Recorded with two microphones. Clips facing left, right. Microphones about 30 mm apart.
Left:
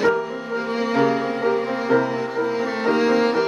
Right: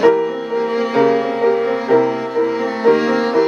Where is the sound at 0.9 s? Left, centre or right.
Centre.